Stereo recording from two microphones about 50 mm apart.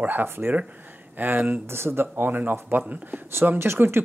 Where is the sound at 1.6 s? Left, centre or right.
Right.